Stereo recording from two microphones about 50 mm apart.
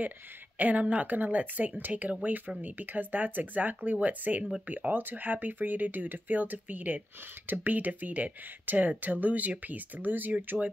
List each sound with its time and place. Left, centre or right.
0.6 s speech: right